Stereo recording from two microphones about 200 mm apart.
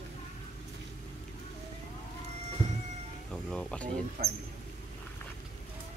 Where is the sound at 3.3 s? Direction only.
5° left (ahead or behind).